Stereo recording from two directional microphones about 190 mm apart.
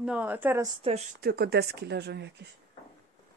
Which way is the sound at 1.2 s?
55° right (ahead or behind).